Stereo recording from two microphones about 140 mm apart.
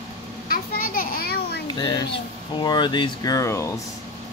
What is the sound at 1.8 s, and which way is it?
Speech, 30° left (ahead or behind).